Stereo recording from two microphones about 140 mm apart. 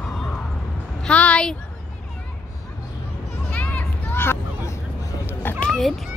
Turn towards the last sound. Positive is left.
turn(degrees=5)  # may be behind; listen again after turning